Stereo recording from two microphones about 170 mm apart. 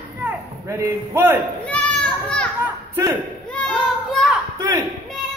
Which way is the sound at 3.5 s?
5° left (ahead or behind).